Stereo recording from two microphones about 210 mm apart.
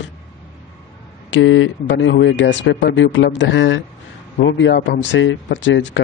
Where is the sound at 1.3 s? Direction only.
65° left (ahead or behind).